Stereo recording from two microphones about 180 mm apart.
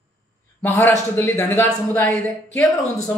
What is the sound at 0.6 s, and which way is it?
A woman's voice, 15° left (ahead or behind).